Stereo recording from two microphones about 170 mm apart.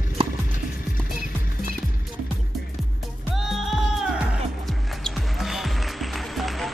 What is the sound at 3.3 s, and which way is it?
Music, centre (ahead or behind).